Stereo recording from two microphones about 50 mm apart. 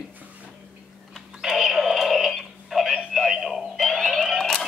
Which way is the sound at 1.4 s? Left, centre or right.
Centre.